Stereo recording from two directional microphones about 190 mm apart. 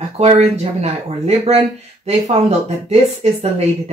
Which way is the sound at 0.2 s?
35° right (ahead or behind).